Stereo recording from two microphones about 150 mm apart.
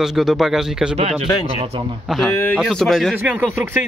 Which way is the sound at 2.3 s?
15° left (ahead or behind).